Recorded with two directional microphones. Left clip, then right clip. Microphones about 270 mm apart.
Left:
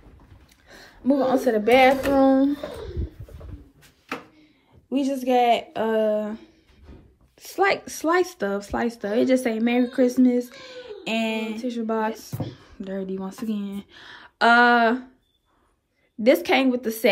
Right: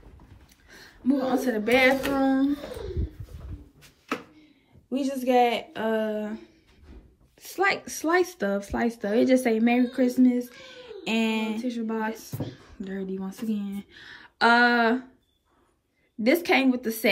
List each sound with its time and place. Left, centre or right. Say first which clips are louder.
0.7 s speech: left 4 dB; centre
4.8 s speech: left 3 dB; centre
16.2 s speech: left 3 dB; centre